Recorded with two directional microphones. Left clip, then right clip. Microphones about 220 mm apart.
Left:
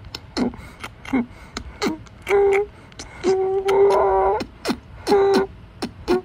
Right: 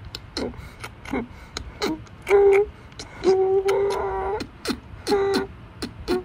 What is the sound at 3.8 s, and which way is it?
Cat, 30° left (ahead or behind).